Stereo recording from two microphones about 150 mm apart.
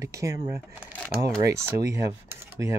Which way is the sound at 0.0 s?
20° right (ahead or behind).